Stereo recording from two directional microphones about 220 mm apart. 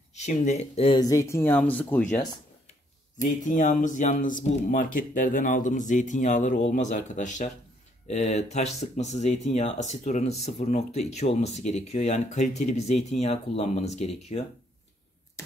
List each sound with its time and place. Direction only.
0.1 s speech: 30° left (ahead or behind); by 2.1 s 10° left (ahead or behind)
3.2 s speech: 35° left (ahead or behind)